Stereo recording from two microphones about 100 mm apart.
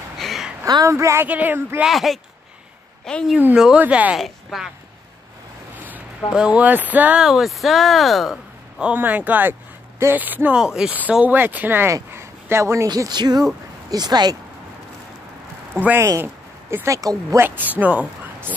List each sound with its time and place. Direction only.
0.2 s a sound: centre (ahead or behind)
0.8 s speech: 30° right (ahead or behind)
1.8 s speech: centre (ahead or behind)
3.5 s speech: 5° right (ahead or behind)
4.2 s speech: centre (ahead or behind)
6.3 s speech: 10° right (ahead or behind)
7.2 s speech: 5° right (ahead or behind); by 12.8 s 25° right (ahead or behind)
12.8 s speech: 40° right (ahead or behind)
15.7 s speech: 20° right (ahead or behind)
16.7 s speech: 30° right (ahead or behind)
17.4 s speech: 15° right (ahead or behind)